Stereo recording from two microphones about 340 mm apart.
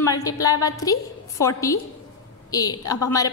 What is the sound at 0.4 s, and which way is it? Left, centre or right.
A woman's voice, centre.